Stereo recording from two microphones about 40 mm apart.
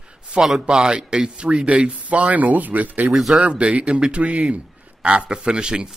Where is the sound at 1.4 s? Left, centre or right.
Right.